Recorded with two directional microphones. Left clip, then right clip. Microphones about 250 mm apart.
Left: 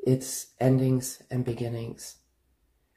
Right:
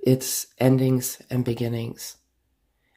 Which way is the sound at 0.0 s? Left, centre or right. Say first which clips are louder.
Right 5 dB; right.